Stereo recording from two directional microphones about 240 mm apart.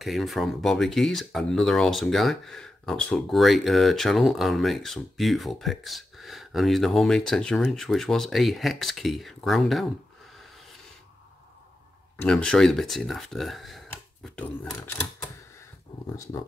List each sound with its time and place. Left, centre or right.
0.0 s speech: centre
12.2 s speech: centre